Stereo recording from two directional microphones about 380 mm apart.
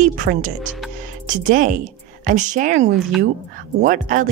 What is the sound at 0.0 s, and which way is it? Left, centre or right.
Speech, right.